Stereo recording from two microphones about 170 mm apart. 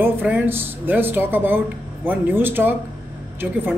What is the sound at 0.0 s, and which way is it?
Speech, 10° right (ahead or behind).